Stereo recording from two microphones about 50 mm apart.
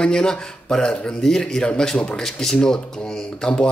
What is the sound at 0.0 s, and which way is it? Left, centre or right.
Speech, centre.